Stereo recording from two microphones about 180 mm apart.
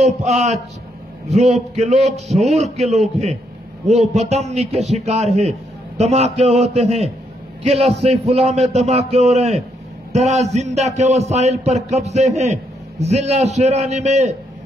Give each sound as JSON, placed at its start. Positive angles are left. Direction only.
{"t": 0.0, "sound": "a man's voice", "side_deg": -40}
{"t": 2.2, "sound": "a man's voice", "side_deg": 0}
{"t": 2.5, "sound": "a man's voice", "side_deg": -35}